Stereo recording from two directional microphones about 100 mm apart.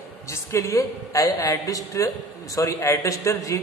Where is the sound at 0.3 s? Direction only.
30° left (ahead or behind).